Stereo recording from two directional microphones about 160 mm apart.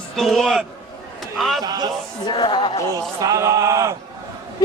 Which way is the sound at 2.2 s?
30° left (ahead or behind).